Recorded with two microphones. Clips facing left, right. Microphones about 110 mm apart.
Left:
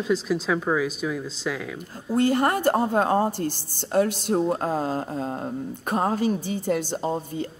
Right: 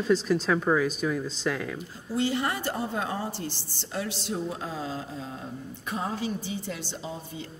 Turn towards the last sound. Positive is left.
turn(degrees=50)  # may be behind; listen again after turning